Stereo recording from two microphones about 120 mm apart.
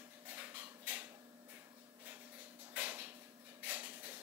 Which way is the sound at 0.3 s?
15° right (ahead or behind).